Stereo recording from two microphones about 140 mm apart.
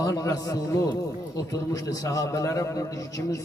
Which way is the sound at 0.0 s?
25° left (ahead or behind).